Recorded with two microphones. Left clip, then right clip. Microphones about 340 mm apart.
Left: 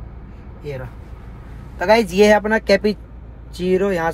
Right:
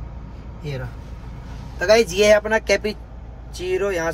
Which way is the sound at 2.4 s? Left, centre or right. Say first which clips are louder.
Left 3 dB; centre.